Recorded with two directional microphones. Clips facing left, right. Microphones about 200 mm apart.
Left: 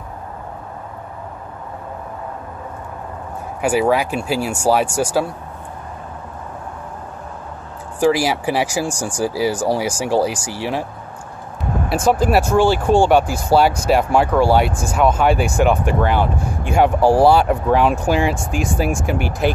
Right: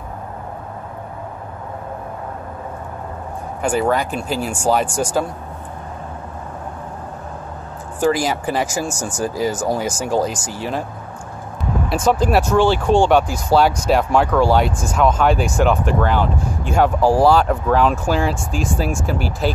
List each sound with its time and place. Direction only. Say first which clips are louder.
3.6 s speech: left 2 dB; 10° left (ahead or behind)
8.0 s speech: left 2 dB; 10° left (ahead or behind)
12.0 s speech: left 1 dB; 10° left (ahead or behind)
19.0 s speech: left 1 dB; 35° right (ahead or behind)